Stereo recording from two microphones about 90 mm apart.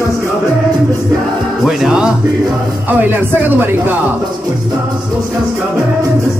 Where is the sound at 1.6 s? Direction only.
10° right (ahead or behind).